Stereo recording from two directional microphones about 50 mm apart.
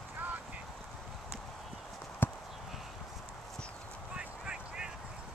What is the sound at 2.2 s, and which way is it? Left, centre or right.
Clip-clop, left.